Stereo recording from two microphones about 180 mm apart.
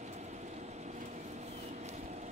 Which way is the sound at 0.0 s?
40° right (ahead or behind).